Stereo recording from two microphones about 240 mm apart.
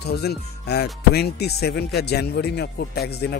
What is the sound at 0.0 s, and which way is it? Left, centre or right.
Speech, left.